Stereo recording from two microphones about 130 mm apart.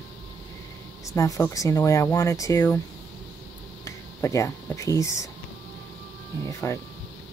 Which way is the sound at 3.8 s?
25° left (ahead or behind).